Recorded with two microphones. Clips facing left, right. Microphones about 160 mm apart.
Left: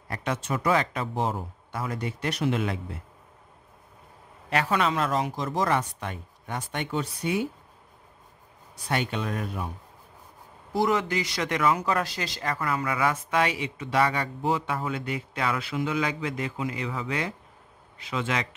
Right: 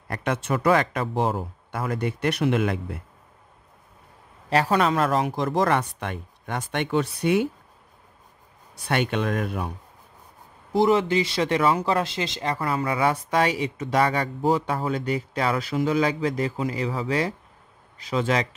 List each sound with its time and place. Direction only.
0.1 s speech: 60° right (ahead or behind)
4.5 s speech: 35° right (ahead or behind); by 7.4 s 75° right (ahead or behind)
8.8 s speech: 70° right (ahead or behind)
10.7 s speech: 25° right (ahead or behind)